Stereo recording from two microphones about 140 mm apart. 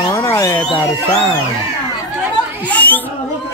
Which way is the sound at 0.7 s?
30° left (ahead or behind).